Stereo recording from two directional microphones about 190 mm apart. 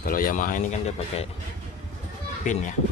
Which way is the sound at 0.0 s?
45° left (ahead or behind).